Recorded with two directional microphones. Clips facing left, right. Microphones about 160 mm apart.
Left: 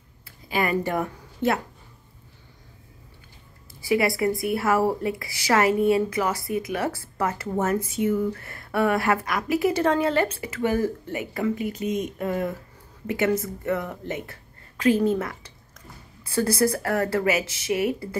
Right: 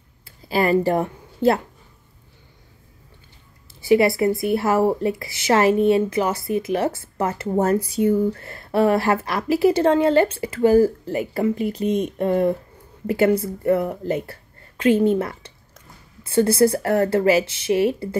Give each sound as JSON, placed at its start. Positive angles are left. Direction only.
{"t": 0.2, "sound": "speech", "side_deg": -30}
{"t": 3.8, "sound": "speech", "side_deg": -25}